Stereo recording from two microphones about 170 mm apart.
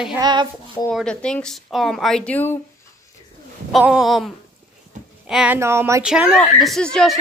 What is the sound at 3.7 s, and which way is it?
A woman's voice, 5° right (ahead or behind).